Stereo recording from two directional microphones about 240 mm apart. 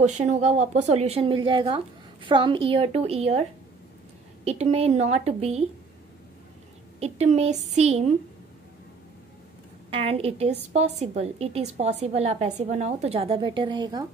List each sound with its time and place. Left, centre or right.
0.0 s a woman's voice: right
4.5 s a woman's voice: right
7.0 s a woman's voice: right
9.8 s a woman's voice: right